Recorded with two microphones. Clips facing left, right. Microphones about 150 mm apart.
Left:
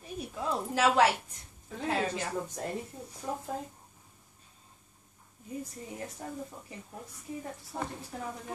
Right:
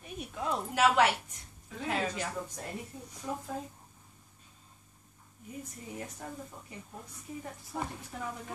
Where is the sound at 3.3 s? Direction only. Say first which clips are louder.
Left 1 dB; 25° left (ahead or behind).